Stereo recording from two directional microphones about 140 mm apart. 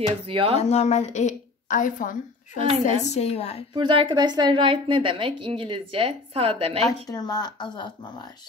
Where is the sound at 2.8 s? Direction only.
55° left (ahead or behind).